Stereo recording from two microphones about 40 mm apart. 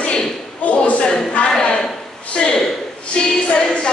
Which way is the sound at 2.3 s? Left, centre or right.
Left.